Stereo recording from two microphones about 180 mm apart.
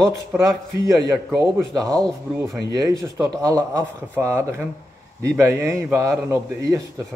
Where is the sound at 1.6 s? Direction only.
5° left (ahead or behind).